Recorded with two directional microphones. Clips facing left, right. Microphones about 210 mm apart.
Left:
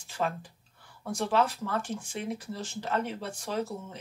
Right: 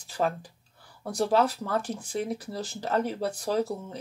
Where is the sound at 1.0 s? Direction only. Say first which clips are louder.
Right 3 dB; 35° right (ahead or behind).